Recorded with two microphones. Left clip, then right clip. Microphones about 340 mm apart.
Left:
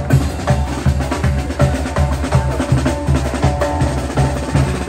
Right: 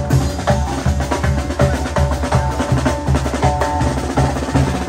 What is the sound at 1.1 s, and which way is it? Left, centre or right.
Music, right.